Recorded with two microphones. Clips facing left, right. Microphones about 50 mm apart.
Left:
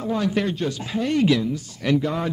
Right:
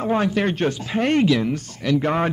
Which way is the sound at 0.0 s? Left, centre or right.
Right.